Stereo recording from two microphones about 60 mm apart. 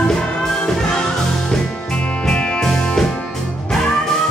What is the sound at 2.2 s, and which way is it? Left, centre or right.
Music, centre.